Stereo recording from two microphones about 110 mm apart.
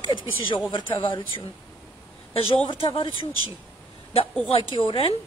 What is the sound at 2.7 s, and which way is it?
Speech, 55° left (ahead or behind).